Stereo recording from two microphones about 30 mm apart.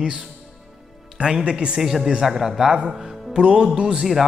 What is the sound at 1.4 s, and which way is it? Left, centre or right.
Speech, right.